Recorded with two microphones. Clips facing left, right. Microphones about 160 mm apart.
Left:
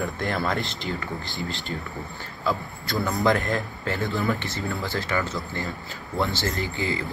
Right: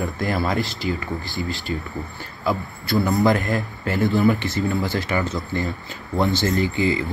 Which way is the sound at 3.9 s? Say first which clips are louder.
Right 9 dB; 20° right (ahead or behind).